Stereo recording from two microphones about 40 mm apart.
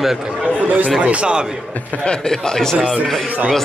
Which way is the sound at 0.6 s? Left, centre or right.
Right.